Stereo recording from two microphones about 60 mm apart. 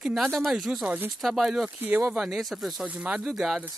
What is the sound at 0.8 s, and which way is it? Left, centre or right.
Speech, right.